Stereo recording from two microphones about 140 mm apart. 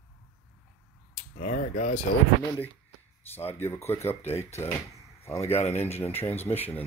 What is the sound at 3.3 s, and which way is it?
Speech, 15° left (ahead or behind).